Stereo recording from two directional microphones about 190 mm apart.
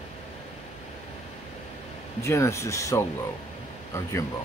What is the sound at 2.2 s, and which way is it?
Speech, 15° left (ahead or behind).